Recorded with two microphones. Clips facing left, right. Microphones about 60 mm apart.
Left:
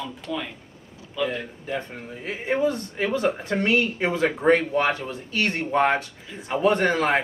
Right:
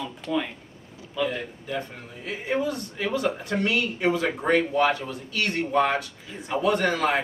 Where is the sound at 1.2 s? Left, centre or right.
Left.